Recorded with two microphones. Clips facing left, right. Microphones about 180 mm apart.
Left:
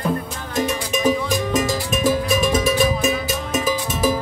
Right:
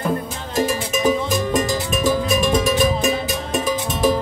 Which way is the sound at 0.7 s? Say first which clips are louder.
Left 1 dB; centre (ahead or behind).